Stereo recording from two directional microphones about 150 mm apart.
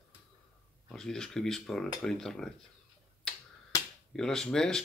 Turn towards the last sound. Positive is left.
turn(degrees=5)  # may be behind; listen again after turning